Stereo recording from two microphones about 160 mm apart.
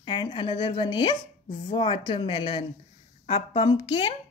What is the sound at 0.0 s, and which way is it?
Speech, 30° left (ahead or behind).